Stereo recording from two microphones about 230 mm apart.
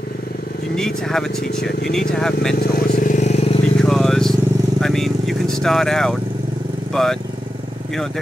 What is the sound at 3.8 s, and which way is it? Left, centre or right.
Vehicle, centre.